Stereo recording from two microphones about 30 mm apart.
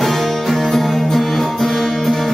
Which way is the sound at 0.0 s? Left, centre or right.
Centre.